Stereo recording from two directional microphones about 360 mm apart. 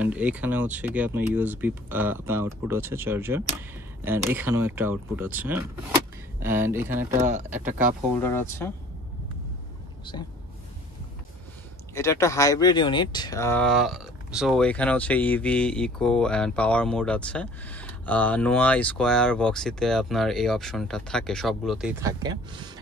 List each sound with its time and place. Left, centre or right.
0.0 s speech: centre
8.2 s speech: centre
10.1 s speech: centre
11.9 s speech: centre